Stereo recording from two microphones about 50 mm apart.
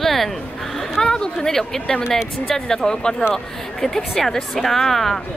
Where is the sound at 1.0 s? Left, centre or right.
Centre.